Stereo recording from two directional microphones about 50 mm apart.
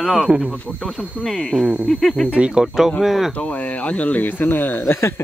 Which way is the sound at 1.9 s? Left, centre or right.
Centre.